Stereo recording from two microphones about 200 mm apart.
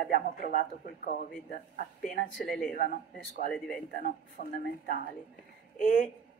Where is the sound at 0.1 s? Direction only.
45° left (ahead or behind).